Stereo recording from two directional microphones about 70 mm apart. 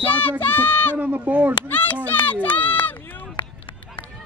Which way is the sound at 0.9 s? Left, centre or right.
Right.